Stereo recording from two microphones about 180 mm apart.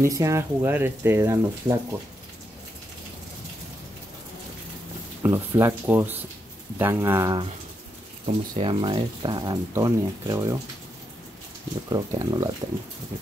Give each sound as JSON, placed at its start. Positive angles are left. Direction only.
{"t": 0.0, "sound": "speech", "side_deg": -15}
{"t": 5.2, "sound": "speech", "side_deg": -15}
{"t": 8.3, "sound": "speech", "side_deg": -30}
{"t": 11.9, "sound": "speech", "side_deg": -25}